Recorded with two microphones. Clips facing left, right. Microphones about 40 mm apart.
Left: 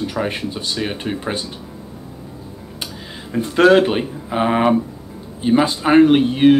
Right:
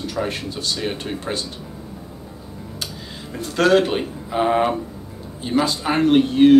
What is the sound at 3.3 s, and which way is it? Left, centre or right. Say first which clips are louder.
Speech: left 4 dB; centre.